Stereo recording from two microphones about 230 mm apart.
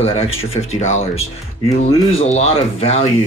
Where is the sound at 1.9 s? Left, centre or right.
Left.